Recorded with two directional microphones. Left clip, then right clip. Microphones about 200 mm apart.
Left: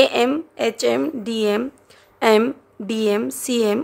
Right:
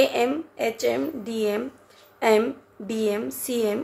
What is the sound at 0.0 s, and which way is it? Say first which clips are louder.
A woman's voice: left 5 dB; 35° left (ahead or behind).